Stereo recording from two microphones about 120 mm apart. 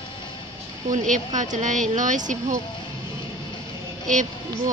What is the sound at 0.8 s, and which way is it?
A woman's voice, 90° right.